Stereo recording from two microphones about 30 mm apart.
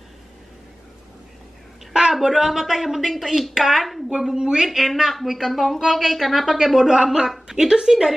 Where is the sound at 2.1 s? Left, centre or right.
Centre.